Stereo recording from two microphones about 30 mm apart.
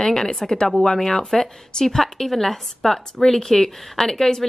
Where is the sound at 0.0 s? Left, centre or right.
Left.